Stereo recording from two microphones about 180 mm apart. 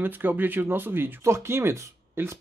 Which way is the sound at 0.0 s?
10° right (ahead or behind).